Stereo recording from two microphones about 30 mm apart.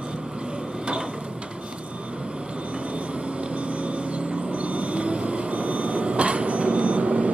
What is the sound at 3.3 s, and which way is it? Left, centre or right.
Vehicle, right.